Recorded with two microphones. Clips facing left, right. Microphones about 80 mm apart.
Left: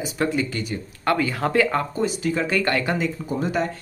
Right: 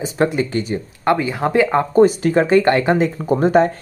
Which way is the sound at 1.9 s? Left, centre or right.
Right.